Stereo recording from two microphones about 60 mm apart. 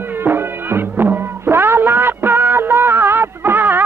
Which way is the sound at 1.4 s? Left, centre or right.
Right.